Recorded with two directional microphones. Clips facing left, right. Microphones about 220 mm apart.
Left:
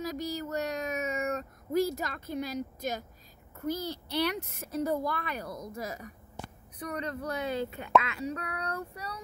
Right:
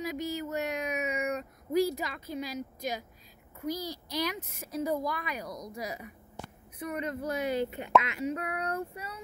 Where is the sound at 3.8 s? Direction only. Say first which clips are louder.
Left 3 dB; 10° right (ahead or behind).